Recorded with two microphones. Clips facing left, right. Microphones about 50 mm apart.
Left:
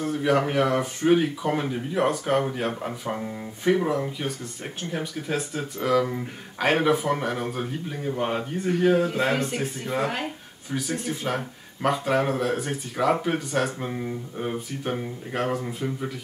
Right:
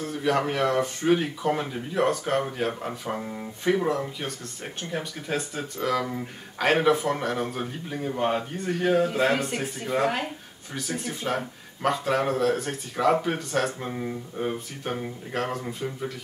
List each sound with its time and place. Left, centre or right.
0.0 s speech: centre